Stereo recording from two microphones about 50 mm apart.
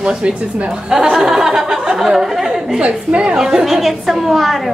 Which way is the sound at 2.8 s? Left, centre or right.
Right.